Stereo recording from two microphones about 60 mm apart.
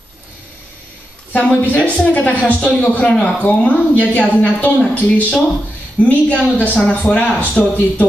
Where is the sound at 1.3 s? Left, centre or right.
Left.